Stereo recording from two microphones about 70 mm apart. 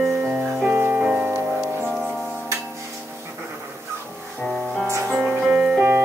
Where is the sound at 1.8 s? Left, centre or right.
Centre.